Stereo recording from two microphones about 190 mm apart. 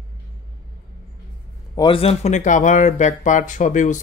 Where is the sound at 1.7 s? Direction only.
25° left (ahead or behind).